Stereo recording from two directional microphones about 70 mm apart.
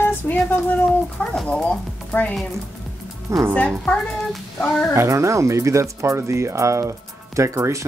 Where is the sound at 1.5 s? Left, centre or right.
Centre.